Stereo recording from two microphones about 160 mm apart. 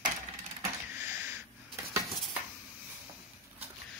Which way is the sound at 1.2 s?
15° right (ahead or behind).